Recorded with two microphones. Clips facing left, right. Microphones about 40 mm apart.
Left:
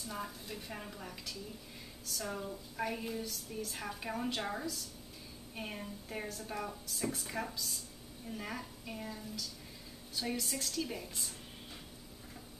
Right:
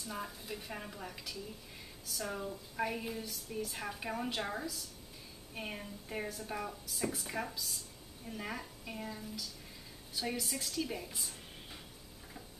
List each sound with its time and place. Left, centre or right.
0.0 s a woman's voice: centre